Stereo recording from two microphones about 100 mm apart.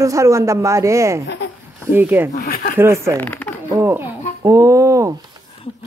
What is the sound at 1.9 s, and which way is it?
Speech, 20° right (ahead or behind).